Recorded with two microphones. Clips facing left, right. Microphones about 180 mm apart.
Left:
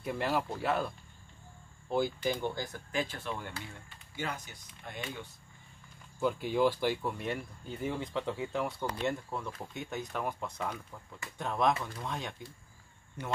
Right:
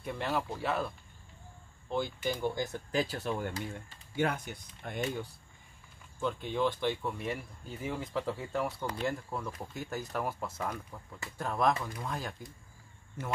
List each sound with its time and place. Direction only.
0.0 s speech: centre (ahead or behind)
2.4 s speech: 20° right (ahead or behind)
2.9 s speech: 40° right (ahead or behind)
4.2 s speech: 55° right (ahead or behind)
6.1 s speech: 5° left (ahead or behind)